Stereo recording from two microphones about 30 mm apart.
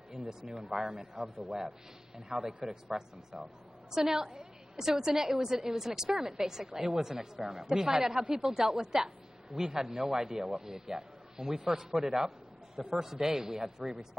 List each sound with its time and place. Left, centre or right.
0.2 s a woman's voice: centre